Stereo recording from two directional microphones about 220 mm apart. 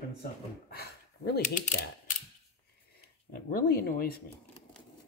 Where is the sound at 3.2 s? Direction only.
40° left (ahead or behind).